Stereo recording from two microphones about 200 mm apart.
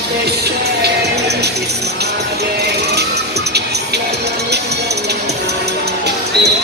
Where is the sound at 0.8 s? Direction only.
55° right (ahead or behind).